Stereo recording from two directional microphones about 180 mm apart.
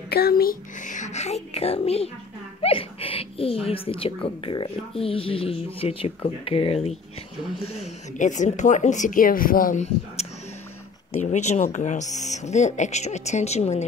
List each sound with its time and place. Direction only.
0.1 s speech: 60° left (ahead or behind)
11.1 s speech: 40° left (ahead or behind)